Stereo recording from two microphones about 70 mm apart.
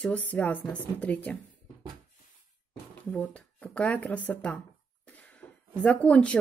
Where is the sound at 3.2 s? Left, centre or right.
Centre.